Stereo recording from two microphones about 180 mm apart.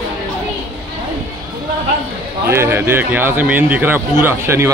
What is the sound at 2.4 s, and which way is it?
Speech, 15° right (ahead or behind).